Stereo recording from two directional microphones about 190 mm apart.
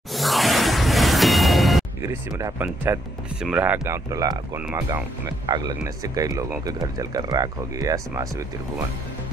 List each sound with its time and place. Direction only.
0.1 s music: centre (ahead or behind)
2.0 s speech: 15° right (ahead or behind)